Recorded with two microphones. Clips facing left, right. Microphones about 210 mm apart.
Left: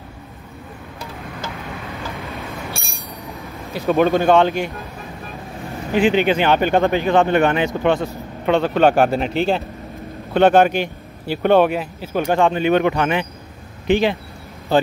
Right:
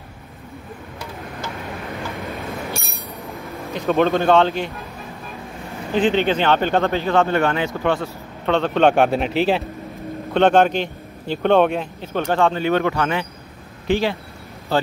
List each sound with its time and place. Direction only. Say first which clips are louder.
3.3 s a sound: right 2 dB; centre (ahead or behind)
3.9 s speech: left 1 dB; 15° left (ahead or behind)
5.9 s speech: left 2 dB; 10° left (ahead or behind)